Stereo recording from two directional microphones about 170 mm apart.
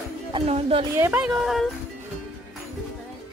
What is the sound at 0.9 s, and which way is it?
Speech, 15° right (ahead or behind).